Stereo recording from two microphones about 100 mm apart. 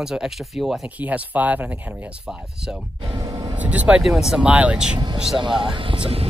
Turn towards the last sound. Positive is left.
turn(degrees=-70)  # may be behind; listen again after turning